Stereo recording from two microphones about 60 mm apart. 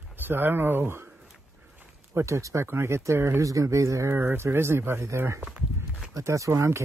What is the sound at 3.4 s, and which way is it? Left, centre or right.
Speech, right.